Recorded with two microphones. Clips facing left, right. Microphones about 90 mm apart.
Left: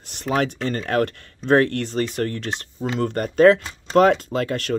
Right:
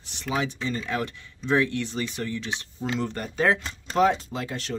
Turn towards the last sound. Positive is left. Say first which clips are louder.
# left 8 dB
turn(degrees=55)  # may be behind; listen again after turning